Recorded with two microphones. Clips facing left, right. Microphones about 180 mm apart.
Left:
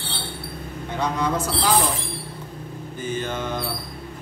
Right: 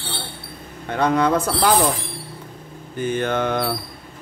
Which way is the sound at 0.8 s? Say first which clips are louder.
Right 6 dB; 60° right (ahead or behind).